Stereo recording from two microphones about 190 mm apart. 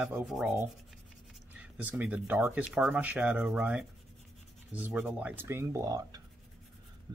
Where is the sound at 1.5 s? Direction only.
10° right (ahead or behind).